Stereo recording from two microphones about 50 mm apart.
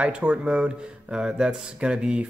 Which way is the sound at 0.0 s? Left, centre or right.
Right.